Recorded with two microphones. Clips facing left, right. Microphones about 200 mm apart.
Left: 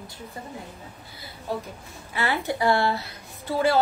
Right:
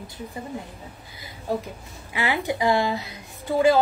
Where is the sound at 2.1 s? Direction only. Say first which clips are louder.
Right 1 dB; 15° right (ahead or behind).